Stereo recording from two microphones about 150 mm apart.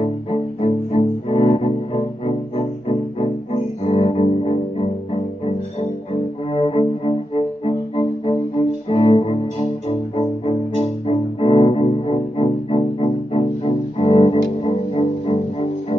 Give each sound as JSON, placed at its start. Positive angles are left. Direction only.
{"t": 0.6, "sound": "cello", "side_deg": 40}
{"t": 6.5, "sound": "music", "side_deg": 35}